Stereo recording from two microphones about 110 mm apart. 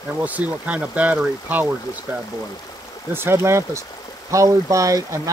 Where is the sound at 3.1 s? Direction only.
20° right (ahead or behind).